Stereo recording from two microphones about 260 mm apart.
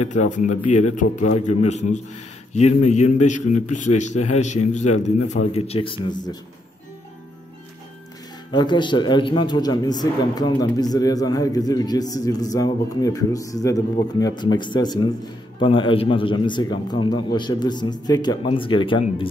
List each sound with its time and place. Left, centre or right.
0.0 s a man's voice: left
8.5 s a man's voice: centre